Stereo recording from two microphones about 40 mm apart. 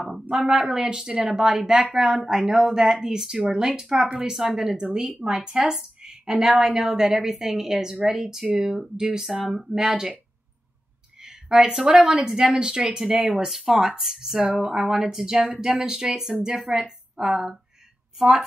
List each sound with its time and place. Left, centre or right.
0.1 s a woman's voice: centre
11.2 s speech: centre
12.0 s a woman's voice: right
12.3 s a woman's voice: centre
12.5 s a woman's voice: centre